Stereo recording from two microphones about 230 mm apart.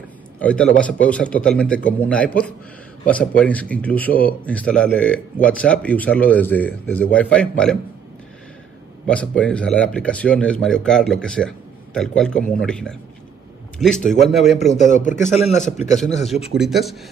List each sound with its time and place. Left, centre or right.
0.4 s speech: centre
9.0 s speech: centre
14.6 s a man's voice: left
16.5 s speech: centre